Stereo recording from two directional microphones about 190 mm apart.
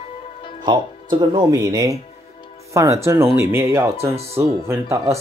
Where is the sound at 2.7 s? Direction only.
15° right (ahead or behind).